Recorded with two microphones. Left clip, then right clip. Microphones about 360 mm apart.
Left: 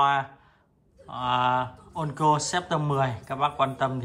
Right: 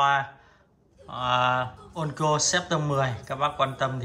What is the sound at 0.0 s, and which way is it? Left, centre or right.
Speech, centre.